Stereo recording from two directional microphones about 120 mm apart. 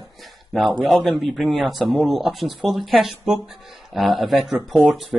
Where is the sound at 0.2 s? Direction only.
Centre (ahead or behind).